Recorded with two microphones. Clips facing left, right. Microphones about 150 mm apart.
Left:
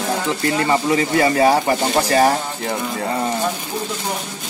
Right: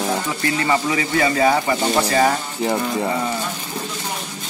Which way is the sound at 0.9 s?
35° left (ahead or behind).